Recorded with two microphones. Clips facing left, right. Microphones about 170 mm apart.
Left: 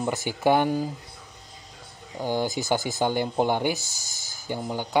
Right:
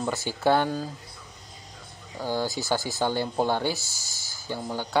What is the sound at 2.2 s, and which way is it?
A man's voice, 15° left (ahead or behind).